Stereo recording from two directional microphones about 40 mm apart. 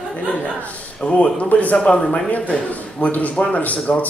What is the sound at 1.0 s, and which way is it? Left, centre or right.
Speech, left.